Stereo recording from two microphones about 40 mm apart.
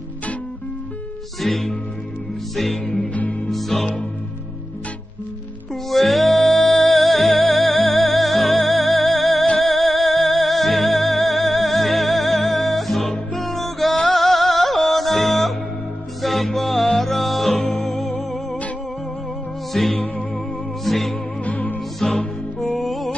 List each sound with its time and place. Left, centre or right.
1.4 s music: centre
3.1 s music: left
3.4 s music: centre
5.9 s music: centre
19.7 s music: centre
21.5 s music: left
22.0 s music: centre